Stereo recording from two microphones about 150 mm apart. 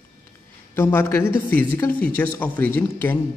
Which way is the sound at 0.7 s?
15° left (ahead or behind).